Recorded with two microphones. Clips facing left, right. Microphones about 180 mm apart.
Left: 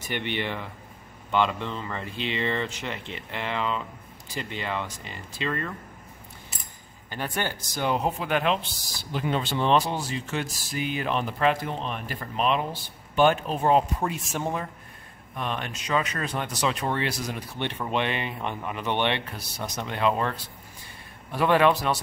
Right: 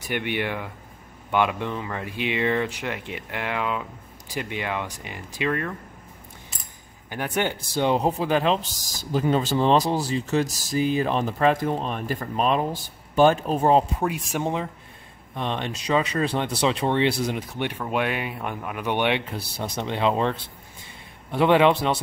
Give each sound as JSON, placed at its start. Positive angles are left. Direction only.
{"t": 0.2, "sound": "speech", "side_deg": -10}
{"t": 7.1, "sound": "speech", "side_deg": -15}
{"t": 7.7, "sound": "speech", "side_deg": -30}
{"t": 13.9, "sound": "speech", "side_deg": -10}
{"t": 17.8, "sound": "speech", "side_deg": -5}
{"t": 19.3, "sound": "speech", "side_deg": -30}